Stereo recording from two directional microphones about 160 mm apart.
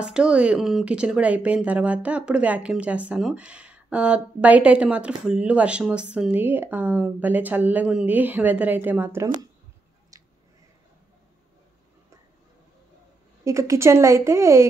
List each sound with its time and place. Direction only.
0.0 s speech: 5° right (ahead or behind)
10.1 s a sound: 20° right (ahead or behind)
13.4 s speech: 20° right (ahead or behind)